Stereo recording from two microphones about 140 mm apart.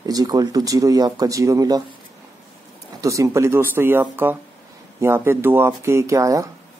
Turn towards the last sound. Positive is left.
turn(degrees=-25)  # may be behind; listen again after turning